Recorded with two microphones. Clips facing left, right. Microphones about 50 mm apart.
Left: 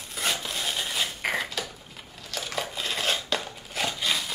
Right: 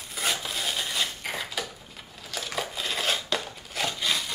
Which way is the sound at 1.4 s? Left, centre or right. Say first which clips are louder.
Even; centre.